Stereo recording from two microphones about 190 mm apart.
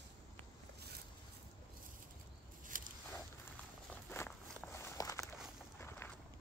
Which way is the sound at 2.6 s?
45° right (ahead or behind).